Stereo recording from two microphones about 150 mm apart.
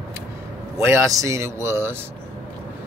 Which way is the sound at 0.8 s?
20° right (ahead or behind).